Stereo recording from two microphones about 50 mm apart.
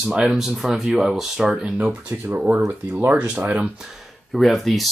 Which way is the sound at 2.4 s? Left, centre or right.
Right.